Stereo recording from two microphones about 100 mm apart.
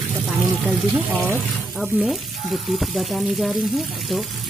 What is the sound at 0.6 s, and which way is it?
Speech, 20° right (ahead or behind).